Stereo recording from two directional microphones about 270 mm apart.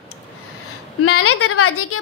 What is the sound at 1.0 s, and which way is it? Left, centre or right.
Speech, left.